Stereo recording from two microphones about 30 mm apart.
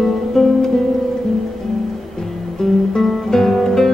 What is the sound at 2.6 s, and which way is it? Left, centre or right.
Music, centre.